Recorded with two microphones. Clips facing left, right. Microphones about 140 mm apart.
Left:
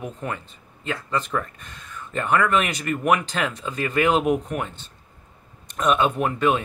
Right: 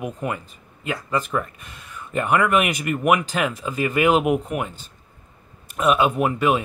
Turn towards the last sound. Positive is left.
turn(degrees=-5)  # may be behind; listen again after turning